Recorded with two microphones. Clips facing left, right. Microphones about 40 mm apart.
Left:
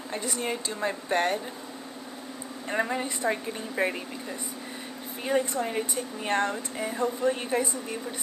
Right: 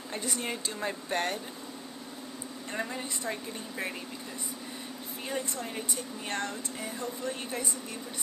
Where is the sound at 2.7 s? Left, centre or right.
Left.